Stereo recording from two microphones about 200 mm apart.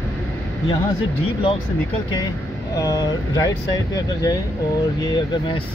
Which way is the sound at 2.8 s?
20° left (ahead or behind).